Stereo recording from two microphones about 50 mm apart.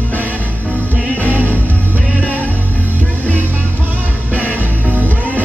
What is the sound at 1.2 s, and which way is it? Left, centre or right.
Music, right.